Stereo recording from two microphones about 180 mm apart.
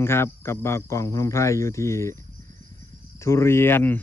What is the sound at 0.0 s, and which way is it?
Speech, 15° left (ahead or behind).